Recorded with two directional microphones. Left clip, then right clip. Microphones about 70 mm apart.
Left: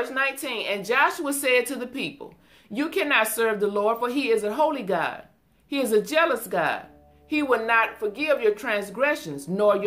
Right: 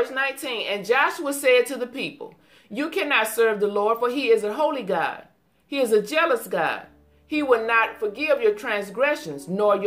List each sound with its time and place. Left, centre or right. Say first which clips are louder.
0.0 s a woman's voice: right 1 dB; left